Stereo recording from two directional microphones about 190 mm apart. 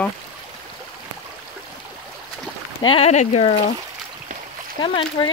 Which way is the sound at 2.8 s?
30° left (ahead or behind).